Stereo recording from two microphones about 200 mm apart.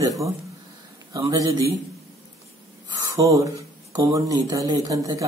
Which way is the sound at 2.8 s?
15° right (ahead or behind).